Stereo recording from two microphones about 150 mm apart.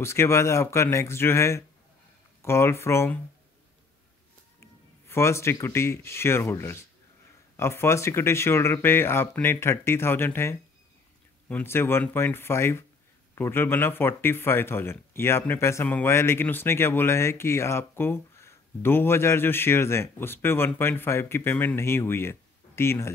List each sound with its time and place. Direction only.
0.0 s speech: 15° left (ahead or behind)
4.6 s speech: 15° left (ahead or behind)